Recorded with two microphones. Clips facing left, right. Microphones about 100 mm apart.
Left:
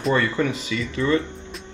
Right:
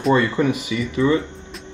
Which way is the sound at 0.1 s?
20° right (ahead or behind).